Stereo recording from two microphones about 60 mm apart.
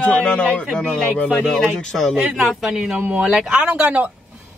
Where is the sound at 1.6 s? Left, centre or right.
Centre.